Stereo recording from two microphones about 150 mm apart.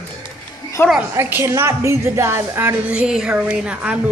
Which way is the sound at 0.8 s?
15° left (ahead or behind).